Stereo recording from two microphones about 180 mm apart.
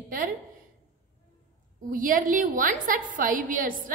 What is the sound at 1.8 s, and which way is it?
A woman's voice, 50° right (ahead or behind).